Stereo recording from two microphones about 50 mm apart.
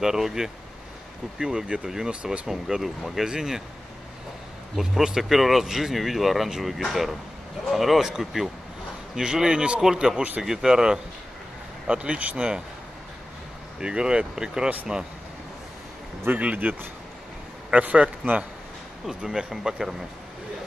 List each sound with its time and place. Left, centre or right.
0.0 s speech: centre
4.7 s speech: centre; by 12.4 s right
13.7 s speech: centre
16.3 s a man's voice: right
17.8 s a man's voice: right
19.0 s speech: centre